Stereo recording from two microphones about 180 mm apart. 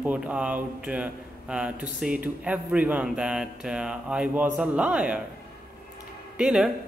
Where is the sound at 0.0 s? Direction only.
10° right (ahead or behind).